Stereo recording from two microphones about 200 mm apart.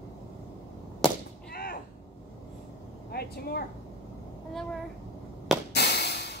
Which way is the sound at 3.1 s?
50° left (ahead or behind).